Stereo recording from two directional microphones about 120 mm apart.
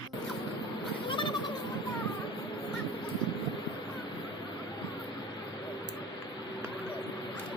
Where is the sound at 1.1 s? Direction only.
40° left (ahead or behind).